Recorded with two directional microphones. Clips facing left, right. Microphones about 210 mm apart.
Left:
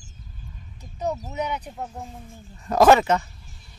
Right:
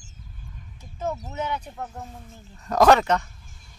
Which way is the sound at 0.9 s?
15° left (ahead or behind).